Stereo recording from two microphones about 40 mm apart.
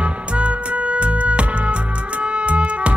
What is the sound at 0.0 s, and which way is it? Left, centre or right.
Music, right.